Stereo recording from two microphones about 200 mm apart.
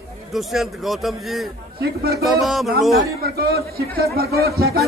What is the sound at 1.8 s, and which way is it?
Speech, 50° right (ahead or behind).